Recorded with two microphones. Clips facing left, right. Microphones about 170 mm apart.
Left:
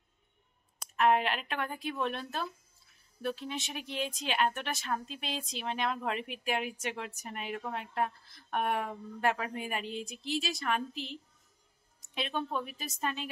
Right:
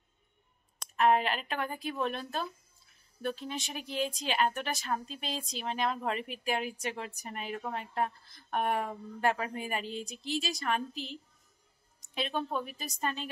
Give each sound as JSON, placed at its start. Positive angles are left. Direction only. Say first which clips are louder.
{"t": 0.7, "sound": "speech", "louder": "right 1 dB", "side_deg": 0}